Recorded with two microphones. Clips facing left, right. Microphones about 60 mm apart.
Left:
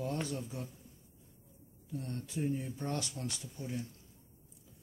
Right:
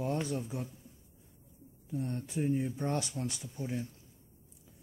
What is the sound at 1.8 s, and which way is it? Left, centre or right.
Speech, right.